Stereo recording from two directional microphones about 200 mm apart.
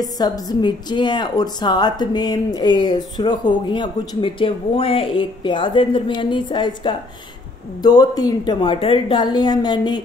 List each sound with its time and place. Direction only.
0.0 s a woman's voice: 20° left (ahead or behind)